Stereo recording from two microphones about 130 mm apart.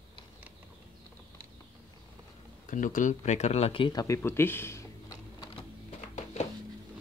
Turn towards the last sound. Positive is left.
turn(degrees=60)  # may be behind; listen again after turning